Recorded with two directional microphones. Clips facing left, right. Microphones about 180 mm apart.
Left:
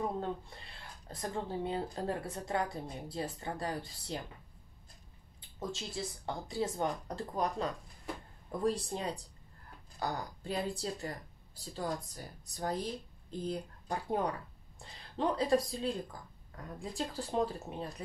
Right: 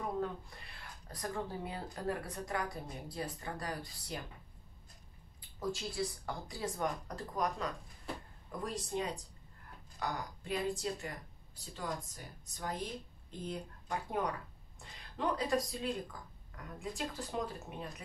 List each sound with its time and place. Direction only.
0.2 s speech: 25° left (ahead or behind)
5.6 s speech: 25° left (ahead or behind)